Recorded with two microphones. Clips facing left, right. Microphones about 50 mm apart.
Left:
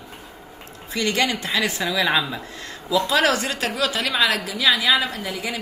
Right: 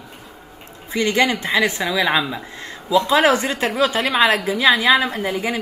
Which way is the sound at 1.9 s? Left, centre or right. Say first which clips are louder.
Right 2 dB; centre.